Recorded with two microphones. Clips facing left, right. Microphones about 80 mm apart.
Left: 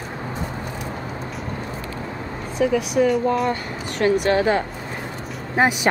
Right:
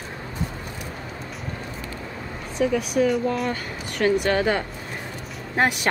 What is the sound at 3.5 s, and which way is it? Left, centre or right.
Speech, left.